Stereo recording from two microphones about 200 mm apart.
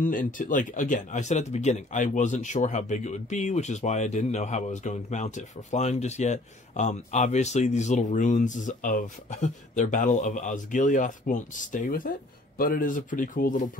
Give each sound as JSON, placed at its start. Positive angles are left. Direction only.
{"t": 0.0, "sound": "speech", "side_deg": 40}